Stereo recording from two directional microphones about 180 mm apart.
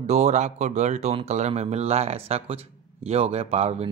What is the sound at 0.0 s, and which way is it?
Speech, 40° right (ahead or behind).